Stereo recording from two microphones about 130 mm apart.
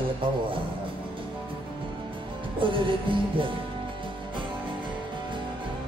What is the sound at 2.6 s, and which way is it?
Music, 40° right (ahead or behind).